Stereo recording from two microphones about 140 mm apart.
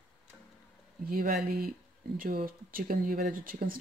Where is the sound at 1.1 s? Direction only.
90° right.